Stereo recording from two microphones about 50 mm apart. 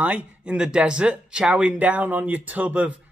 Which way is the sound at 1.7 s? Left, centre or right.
Right.